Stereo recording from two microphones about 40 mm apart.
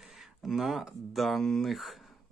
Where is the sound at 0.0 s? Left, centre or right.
Centre.